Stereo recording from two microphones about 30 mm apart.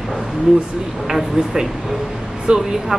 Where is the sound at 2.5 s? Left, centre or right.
Right.